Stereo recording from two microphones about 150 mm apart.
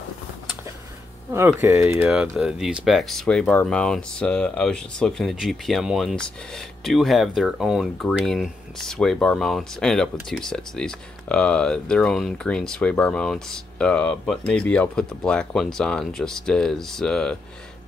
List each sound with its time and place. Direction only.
1.3 s speech: 20° right (ahead or behind)
2.0 s speech: 5° right (ahead or behind)